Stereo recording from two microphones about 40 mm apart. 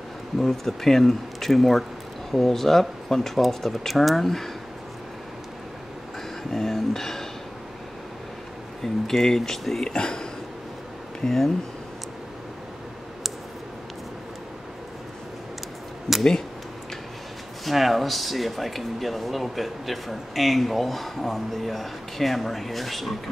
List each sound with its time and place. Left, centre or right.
0.4 s speech: centre
6.5 s speech: centre
8.8 s speech: centre
9.8 s speech: centre
17.6 s speech: centre